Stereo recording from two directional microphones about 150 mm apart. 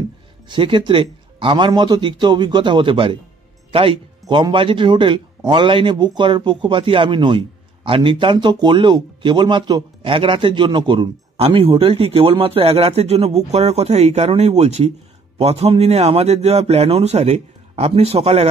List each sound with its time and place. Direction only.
0.5 s a man's voice: 30° right (ahead or behind)